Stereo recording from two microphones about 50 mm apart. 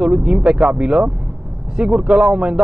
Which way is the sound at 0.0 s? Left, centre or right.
Centre.